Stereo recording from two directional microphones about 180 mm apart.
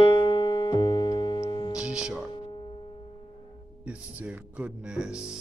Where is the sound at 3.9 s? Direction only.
10° right (ahead or behind).